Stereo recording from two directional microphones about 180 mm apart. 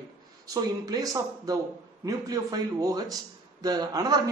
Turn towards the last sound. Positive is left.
turn(degrees=-20)  # may be behind; listen again after turning